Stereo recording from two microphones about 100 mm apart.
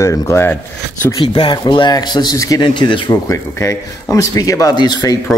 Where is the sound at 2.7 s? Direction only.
50° left (ahead or behind).